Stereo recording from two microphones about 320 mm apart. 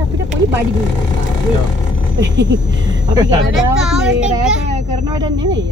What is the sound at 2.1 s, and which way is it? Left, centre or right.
Speech, right.